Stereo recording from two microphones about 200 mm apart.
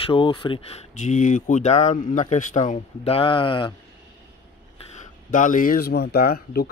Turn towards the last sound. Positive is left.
turn(degrees=50)  # may be behind; listen again after turning